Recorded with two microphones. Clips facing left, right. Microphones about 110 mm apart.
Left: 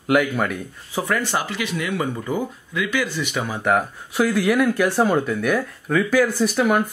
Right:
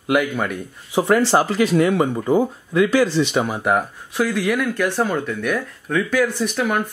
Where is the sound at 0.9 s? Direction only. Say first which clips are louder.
Right 6 dB; 25° right (ahead or behind).